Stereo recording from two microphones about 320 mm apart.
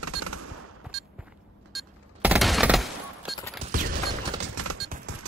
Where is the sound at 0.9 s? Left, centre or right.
Centre.